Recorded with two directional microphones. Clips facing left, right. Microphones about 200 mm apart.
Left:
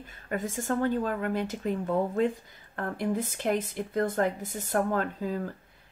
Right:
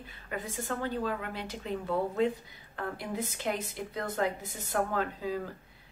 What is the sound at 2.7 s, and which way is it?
A woman's voice, 50° left (ahead or behind).